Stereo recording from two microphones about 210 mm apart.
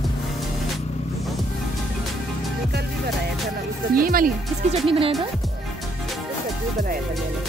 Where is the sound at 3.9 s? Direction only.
45° right (ahead or behind).